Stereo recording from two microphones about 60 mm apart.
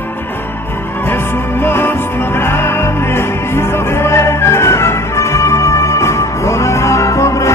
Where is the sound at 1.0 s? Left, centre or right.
Left.